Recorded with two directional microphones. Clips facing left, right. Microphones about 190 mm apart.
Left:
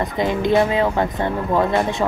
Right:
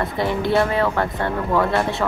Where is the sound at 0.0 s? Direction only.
20° left (ahead or behind).